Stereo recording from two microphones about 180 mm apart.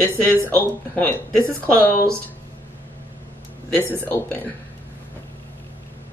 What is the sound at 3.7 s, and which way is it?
Speech, 10° left (ahead or behind).